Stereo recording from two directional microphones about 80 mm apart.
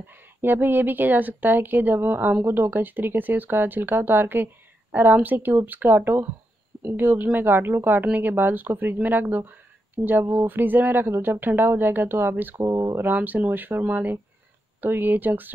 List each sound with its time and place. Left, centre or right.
0.0 s speech: right
12.6 s speech: right
13.1 s speech: right